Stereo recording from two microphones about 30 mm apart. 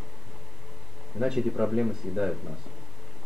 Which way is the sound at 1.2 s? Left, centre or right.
Centre.